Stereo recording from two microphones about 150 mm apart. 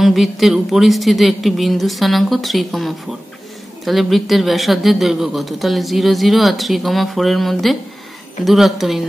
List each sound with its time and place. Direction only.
0.0 s speech: centre (ahead or behind)